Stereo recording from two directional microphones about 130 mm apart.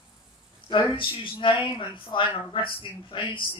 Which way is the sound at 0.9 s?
40° left (ahead or behind).